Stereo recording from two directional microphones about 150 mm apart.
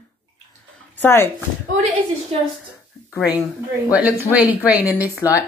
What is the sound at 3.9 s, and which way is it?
A woman's voice, 10° right (ahead or behind).